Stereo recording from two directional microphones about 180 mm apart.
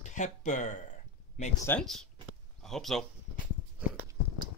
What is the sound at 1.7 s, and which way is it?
Speech, 5° left (ahead or behind).